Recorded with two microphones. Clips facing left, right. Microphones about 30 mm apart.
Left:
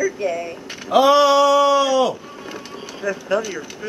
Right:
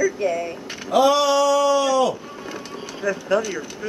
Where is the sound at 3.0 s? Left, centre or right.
Centre.